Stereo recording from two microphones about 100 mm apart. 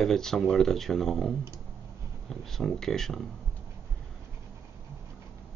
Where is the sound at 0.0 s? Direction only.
5° left (ahead or behind).